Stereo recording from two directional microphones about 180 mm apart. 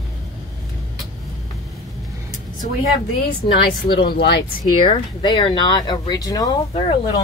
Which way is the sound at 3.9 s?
25° left (ahead or behind).